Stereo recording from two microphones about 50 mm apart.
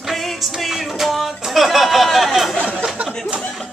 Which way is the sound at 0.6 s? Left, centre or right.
Centre.